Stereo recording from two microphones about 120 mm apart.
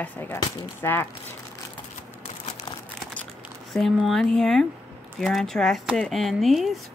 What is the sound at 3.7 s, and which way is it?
Speech, centre (ahead or behind).